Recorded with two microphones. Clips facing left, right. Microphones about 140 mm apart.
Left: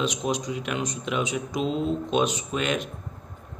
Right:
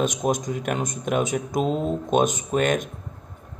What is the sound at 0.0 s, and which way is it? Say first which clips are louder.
Speech: right 4 dB; 45° right (ahead or behind).